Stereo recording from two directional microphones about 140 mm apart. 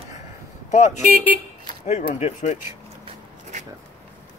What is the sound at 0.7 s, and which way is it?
Speech, 55° left (ahead or behind).